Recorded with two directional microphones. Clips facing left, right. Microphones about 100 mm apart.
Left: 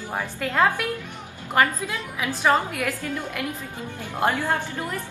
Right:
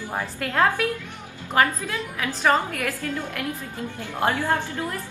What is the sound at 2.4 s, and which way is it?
A woman's voice, 15° left (ahead or behind).